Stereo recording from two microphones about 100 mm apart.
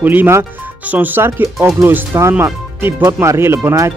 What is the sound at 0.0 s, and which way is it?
Speech, 20° right (ahead or behind).